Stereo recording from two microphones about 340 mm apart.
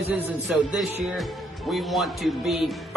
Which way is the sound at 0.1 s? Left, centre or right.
Centre.